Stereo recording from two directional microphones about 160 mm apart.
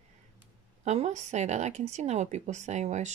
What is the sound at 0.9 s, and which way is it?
Speech, 45° right (ahead or behind).